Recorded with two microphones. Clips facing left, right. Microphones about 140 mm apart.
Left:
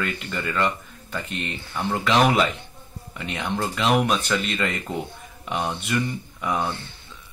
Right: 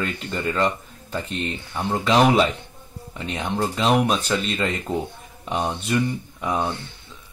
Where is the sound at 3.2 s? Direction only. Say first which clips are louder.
Right 2 dB; 30° right (ahead or behind).